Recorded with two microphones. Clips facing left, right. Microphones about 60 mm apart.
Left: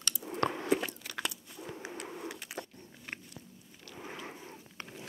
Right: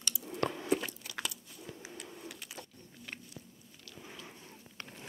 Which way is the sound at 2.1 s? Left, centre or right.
Left.